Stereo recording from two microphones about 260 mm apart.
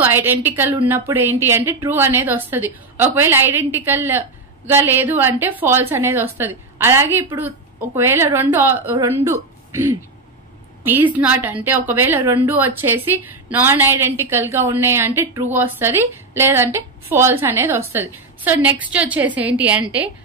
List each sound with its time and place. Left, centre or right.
0.0 s a woman's voice: centre
10.8 s a woman's voice: centre